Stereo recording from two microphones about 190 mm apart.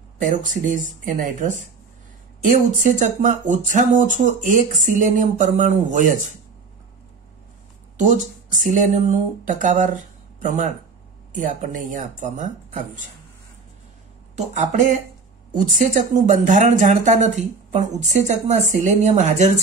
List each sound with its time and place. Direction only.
0.2 s speech: 45° right (ahead or behind)
8.0 s speech: 40° right (ahead or behind)
14.3 s speech: 40° right (ahead or behind)